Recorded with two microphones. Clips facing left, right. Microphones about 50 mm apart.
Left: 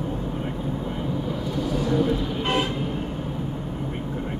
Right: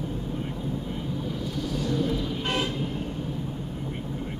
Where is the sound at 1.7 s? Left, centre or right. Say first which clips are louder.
Left 5 dB; left.